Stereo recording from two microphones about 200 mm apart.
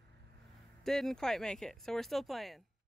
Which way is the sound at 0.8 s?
Centre (ahead or behind).